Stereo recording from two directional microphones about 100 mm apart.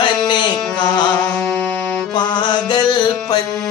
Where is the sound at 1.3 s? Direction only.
10° left (ahead or behind).